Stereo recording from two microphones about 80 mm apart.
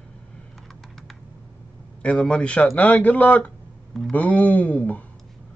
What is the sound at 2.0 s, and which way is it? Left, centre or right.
Speech, centre.